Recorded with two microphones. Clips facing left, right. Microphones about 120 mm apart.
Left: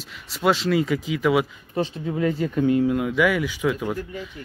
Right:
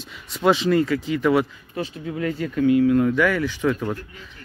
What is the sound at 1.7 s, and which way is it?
Speech, 30° left (ahead or behind).